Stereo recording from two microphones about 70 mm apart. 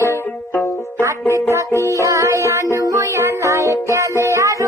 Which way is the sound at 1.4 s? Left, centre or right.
Right.